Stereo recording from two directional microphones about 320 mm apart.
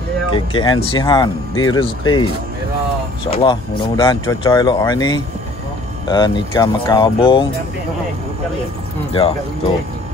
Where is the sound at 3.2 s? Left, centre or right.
Centre.